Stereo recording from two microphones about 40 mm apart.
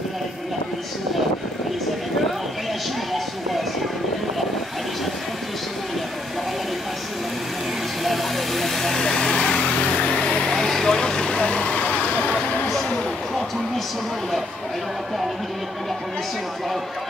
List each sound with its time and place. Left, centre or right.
8.0 s vehicle: centre
9.0 s vehicle: centre
11.4 s vehicle: left